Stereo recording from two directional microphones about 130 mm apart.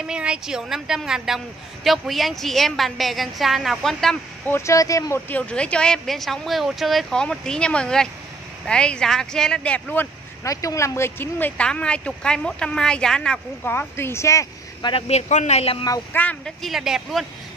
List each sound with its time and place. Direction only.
0.0 s speech: 5° right (ahead or behind)
4.5 s speech: 20° left (ahead or behind)
5.3 s speech: 10° left (ahead or behind)
10.4 s speech: 25° left (ahead or behind)
14.9 s a man's voice: 50° left (ahead or behind)
16.1 s speech: 10° left (ahead or behind)
16.6 s speech: 5° right (ahead or behind)